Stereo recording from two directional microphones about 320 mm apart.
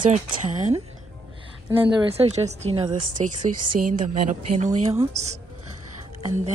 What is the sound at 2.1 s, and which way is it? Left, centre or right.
Speech, centre.